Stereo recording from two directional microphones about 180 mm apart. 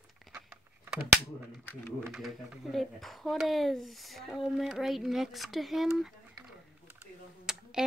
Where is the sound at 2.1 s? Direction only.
Centre (ahead or behind).